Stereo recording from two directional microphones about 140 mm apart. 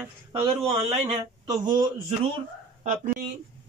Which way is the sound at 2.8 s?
60° right (ahead or behind).